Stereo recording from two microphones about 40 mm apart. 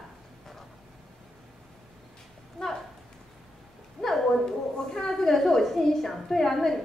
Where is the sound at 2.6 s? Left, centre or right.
Centre.